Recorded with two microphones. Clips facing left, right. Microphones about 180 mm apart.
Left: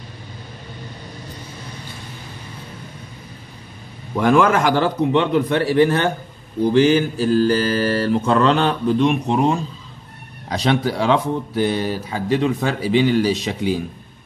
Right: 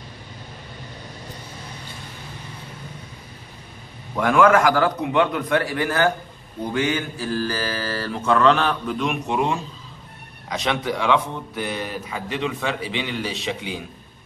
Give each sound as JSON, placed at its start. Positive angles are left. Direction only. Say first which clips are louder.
{"t": 4.2, "sound": "mantra", "louder": "left 1 dB", "side_deg": 30}
{"t": 10.5, "sound": "speech", "louder": "left 5 dB", "side_deg": 35}